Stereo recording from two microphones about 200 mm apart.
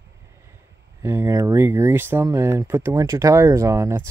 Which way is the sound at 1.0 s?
10° right (ahead or behind).